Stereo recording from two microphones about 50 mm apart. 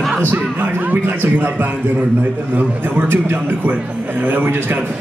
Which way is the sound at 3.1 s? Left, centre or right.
Right.